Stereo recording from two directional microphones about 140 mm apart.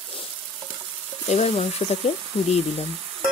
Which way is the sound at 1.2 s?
50° left (ahead or behind).